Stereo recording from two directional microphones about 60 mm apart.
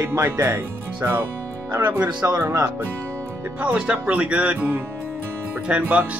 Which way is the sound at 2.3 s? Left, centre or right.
Right.